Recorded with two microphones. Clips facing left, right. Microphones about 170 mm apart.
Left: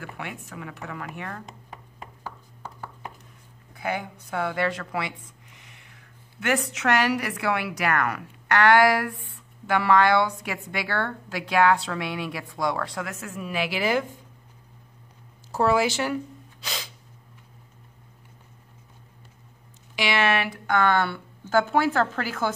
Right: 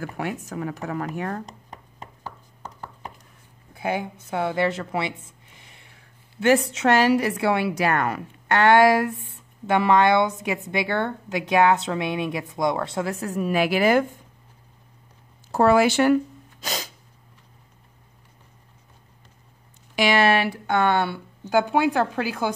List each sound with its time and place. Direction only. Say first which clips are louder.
0.0 s speech: right 7 dB; 40° right (ahead or behind)
3.7 s a woman's voice: right 3 dB; 25° right (ahead or behind)
5.6 s a sound: right 1 dB; 30° right (ahead or behind)
6.4 s a woman's voice: right 6 dB; 30° right (ahead or behind); by 14.0 s 50° right (ahead or behind)
15.5 s speech: right 5 dB; 55° right (ahead or behind)
16.6 s sneeze: right 5 dB; 45° right (ahead or behind)
20.0 s speech: right 5 dB; 40° right (ahead or behind); by 22.5 s 15° right (ahead or behind)